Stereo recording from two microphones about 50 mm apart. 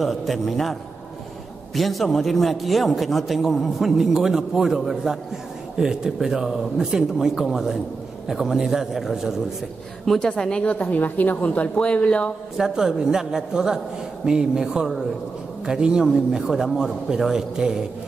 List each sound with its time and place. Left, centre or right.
0.0 s a man's voice: centre
10.0 s a woman's voice: centre
10.6 s speech: left
12.5 s a man's voice: centre